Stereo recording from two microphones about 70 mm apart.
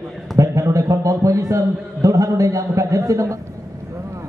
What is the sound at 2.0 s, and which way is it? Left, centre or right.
A man's voice, right.